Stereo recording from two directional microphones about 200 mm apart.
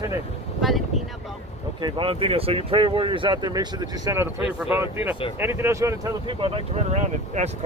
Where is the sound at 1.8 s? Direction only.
25° right (ahead or behind).